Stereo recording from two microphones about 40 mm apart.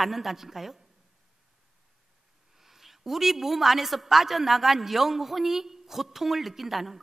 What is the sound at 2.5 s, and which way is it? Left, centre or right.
A woman's voice, centre.